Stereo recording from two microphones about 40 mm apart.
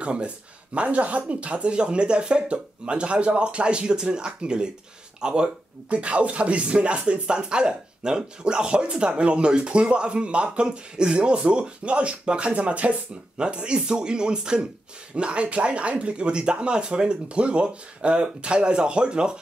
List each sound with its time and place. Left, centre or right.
0.0 s speech: right